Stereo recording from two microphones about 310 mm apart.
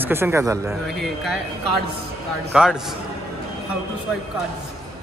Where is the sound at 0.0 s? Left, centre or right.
Centre.